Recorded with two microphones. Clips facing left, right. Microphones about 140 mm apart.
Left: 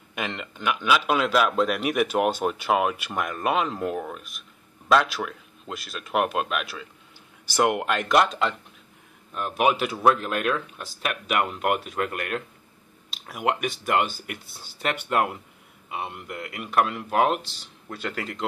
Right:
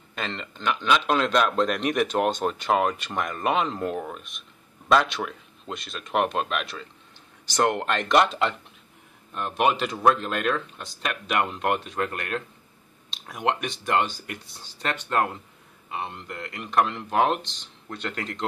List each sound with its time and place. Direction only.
0.1 s a man's voice: 15° left (ahead or behind)